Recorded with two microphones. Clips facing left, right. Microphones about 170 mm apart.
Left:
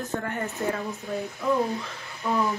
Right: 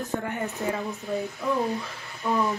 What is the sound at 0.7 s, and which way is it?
Speech, centre (ahead or behind).